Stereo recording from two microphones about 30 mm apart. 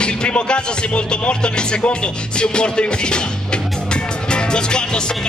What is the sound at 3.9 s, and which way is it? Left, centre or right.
Music, left.